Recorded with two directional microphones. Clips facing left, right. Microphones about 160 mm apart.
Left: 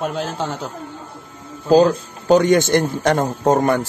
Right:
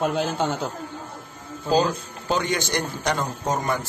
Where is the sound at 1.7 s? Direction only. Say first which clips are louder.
Left 8 dB; 45° left (ahead or behind).